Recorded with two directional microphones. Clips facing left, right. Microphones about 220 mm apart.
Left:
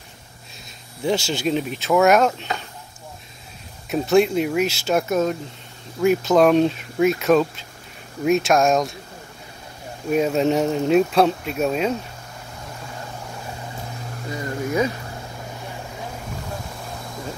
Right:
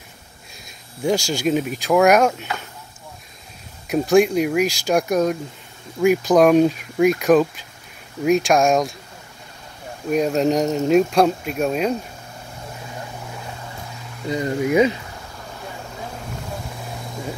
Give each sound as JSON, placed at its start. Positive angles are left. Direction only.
{"t": 1.0, "sound": "speech", "side_deg": 5}
{"t": 4.1, "sound": "speech", "side_deg": 0}
{"t": 10.0, "sound": "speech", "side_deg": 0}
{"t": 14.3, "sound": "speech", "side_deg": -15}